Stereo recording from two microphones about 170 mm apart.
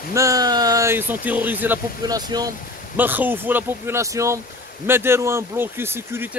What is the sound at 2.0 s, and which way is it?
Speech, 25° right (ahead or behind).